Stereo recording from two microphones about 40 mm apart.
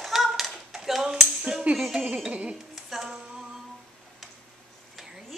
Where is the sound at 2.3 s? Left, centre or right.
Right.